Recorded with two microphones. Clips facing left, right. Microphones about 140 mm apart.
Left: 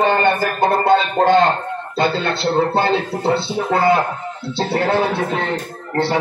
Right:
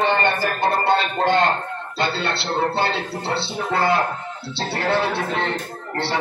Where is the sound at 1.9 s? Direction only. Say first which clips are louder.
Left 5 dB; 50° left (ahead or behind).